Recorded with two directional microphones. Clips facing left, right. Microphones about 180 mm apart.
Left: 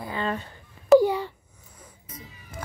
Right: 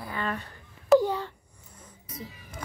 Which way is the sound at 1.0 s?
10° left (ahead or behind).